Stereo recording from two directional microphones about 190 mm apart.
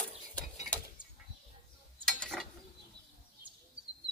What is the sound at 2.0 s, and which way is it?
Pulleys, 5° left (ahead or behind).